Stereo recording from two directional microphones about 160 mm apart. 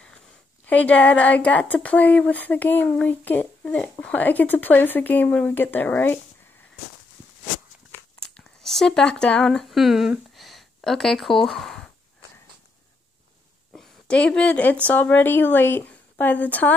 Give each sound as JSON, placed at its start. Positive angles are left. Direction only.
{"t": 0.7, "sound": "speech", "side_deg": 10}
{"t": 8.2, "sound": "speech", "side_deg": 5}
{"t": 13.7, "sound": "a woman's voice", "side_deg": 5}